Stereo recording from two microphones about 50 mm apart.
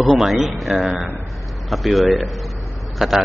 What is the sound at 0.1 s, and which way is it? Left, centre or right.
Speech, centre.